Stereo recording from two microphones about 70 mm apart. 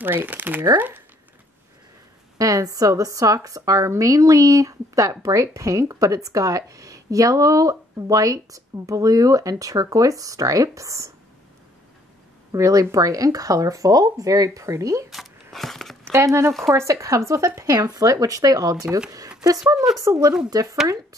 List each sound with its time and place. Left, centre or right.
0.0 s speech: right
2.3 s speech: right
12.5 s speech: right
15.5 s a sound: centre
16.0 s speech: right
17.7 s speech: right